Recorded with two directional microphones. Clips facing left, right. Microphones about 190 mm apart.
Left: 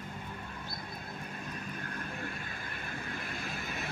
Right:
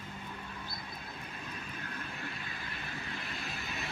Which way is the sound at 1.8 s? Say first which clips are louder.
Left 3 dB; 50° left (ahead or behind).